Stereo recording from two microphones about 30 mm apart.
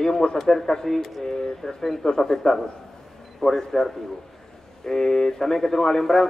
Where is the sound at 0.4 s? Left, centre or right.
Centre.